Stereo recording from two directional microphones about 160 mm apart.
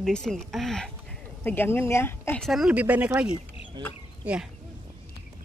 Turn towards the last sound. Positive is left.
turn(degrees=-5)  # may be behind; listen again after turning